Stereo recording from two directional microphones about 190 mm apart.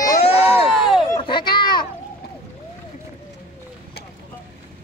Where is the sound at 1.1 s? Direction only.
25° left (ahead or behind).